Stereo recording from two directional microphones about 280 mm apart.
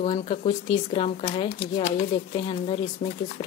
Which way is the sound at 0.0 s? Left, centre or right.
Left.